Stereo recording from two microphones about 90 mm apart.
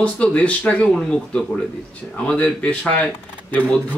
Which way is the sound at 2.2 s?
15° left (ahead or behind).